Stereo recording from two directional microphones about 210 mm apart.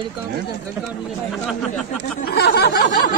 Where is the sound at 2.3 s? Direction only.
50° left (ahead or behind).